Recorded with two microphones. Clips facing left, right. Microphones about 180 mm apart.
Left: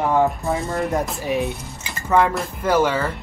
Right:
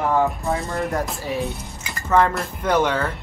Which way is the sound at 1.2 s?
15° left (ahead or behind).